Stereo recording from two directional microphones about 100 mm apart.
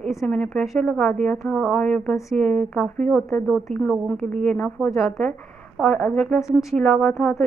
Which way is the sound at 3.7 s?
15° left (ahead or behind).